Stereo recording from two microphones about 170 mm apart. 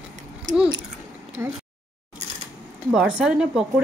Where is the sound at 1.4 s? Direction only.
15° right (ahead or behind).